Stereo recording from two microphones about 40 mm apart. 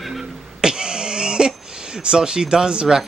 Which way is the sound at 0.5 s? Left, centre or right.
Centre.